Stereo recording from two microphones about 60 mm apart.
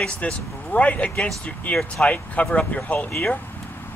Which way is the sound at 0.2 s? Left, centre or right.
Left.